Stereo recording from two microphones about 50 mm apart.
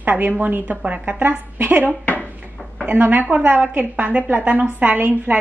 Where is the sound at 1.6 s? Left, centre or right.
Right.